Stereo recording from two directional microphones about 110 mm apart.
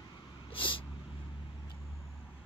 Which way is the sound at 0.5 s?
50° left (ahead or behind).